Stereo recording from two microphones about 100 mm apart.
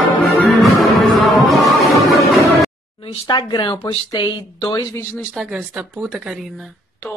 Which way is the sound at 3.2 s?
45° left (ahead or behind).